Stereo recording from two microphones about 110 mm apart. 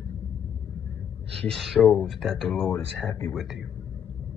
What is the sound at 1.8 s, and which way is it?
Speech, 10° left (ahead or behind).